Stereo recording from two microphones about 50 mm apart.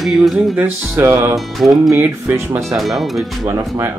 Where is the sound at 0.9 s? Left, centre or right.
Right.